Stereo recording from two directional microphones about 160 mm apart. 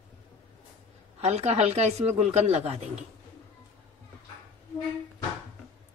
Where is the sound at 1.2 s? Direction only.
40° right (ahead or behind).